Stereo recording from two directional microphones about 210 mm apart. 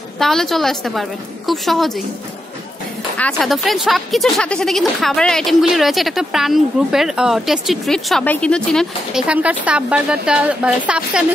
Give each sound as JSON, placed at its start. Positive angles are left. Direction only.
{"t": 0.2, "sound": "speech", "side_deg": 0}
{"t": 3.2, "sound": "speech", "side_deg": 5}